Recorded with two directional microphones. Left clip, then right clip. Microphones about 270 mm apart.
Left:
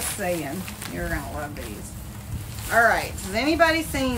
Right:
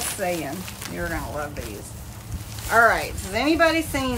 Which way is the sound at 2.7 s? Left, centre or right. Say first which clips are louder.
Right 2 dB; centre.